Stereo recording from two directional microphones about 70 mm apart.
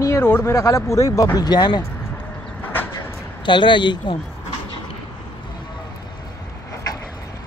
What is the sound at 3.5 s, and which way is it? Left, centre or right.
Speech, left.